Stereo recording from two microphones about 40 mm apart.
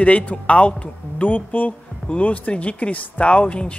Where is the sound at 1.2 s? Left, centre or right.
Left.